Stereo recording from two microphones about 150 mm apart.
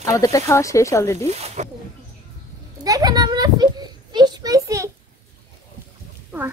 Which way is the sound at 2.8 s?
25° right (ahead or behind).